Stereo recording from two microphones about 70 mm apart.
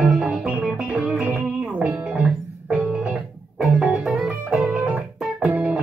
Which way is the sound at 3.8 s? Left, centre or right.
Centre.